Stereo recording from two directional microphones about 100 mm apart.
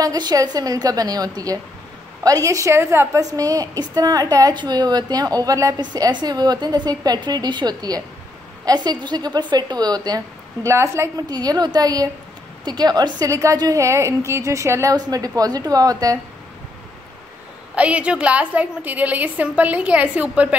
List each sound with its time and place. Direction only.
0.0 s a woman's voice: 40° right (ahead or behind)
11.2 s a woman's voice: 40° right (ahead or behind)
17.7 s a woman's voice: 10° right (ahead or behind)